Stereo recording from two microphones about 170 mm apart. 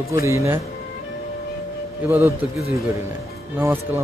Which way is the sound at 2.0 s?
15° right (ahead or behind).